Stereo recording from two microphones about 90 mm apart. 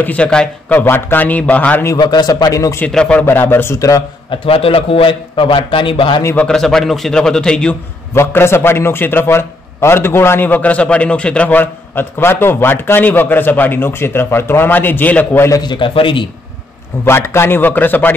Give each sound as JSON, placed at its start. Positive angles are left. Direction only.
{"t": 0.0, "sound": "a man's voice", "side_deg": 15}
{"t": 2.0, "sound": "a man's voice", "side_deg": 50}
{"t": 2.9, "sound": "a man's voice", "side_deg": 10}
{"t": 3.3, "sound": "a man's voice", "side_deg": 25}
{"t": 4.3, "sound": "a man's voice", "side_deg": 90}
{"t": 6.3, "sound": "a man's voice", "side_deg": 10}
{"t": 8.1, "sound": "a man's voice", "side_deg": 25}
{"t": 15.6, "sound": "a man's voice", "side_deg": 55}
{"t": 15.9, "sound": "a man's voice", "side_deg": 70}
{"t": 17.0, "sound": "a man's voice", "side_deg": 25}